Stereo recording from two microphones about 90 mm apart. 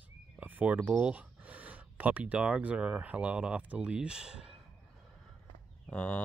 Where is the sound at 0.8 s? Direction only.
15° right (ahead or behind).